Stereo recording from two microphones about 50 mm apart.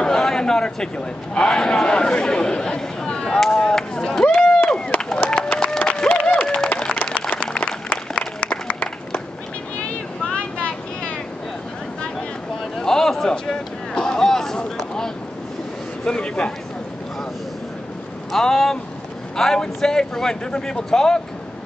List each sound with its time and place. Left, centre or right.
0.0 s chatter: centre
1.3 s speech: centre
4.6 s a sound: centre
5.3 s music: centre
7.3 s a sound: left
9.8 s vehicle: left
12.7 s a sound: centre
16.1 s speech: centre
18.3 s speech: centre